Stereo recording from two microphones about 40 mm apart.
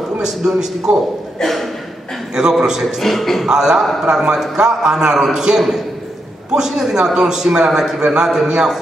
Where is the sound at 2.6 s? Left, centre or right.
Centre.